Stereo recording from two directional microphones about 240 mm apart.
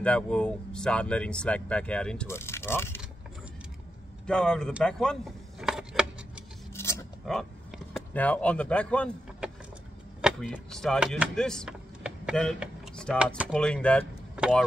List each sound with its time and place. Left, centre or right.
0.0 s speech: centre
4.3 s speech: centre
6.7 s a sound: centre
7.9 s speech: centre